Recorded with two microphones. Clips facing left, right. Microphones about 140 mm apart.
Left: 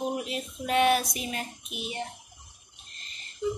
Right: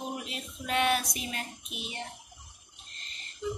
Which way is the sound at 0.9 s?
45° left (ahead or behind).